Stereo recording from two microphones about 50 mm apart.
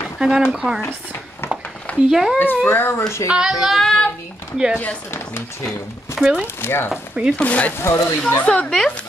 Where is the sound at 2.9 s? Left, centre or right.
Left.